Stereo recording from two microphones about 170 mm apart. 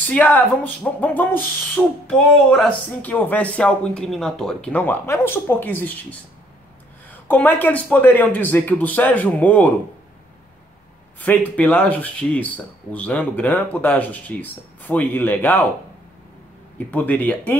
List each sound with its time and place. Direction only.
0.0 s speech: 10° left (ahead or behind)
11.1 s speech: 10° left (ahead or behind)
16.7 s speech: 10° left (ahead or behind)